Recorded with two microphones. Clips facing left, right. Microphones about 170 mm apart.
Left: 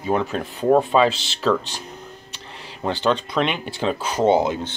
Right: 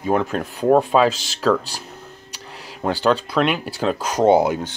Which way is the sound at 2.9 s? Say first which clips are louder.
Right 2 dB; 10° right (ahead or behind).